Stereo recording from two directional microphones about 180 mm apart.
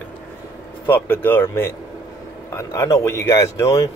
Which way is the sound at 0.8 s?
10° left (ahead or behind).